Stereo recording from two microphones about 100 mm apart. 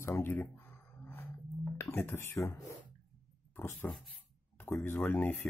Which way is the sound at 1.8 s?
25° left (ahead or behind).